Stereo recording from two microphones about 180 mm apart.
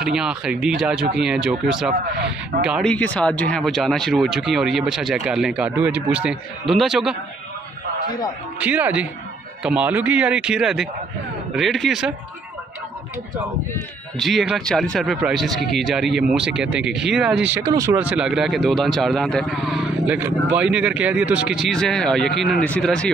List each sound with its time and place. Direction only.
0.0 s speech: 5° right (ahead or behind)
2.1 s speech: 65° right (ahead or behind)
2.6 s speech: 5° right (ahead or behind)
2.9 s speech: 5° left (ahead or behind)
8.5 s speech: 10° right (ahead or behind)
14.1 s speech: centre (ahead or behind)